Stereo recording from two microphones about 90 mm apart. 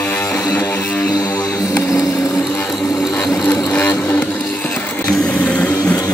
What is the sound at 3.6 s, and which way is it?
Vehicle, 15° left (ahead or behind).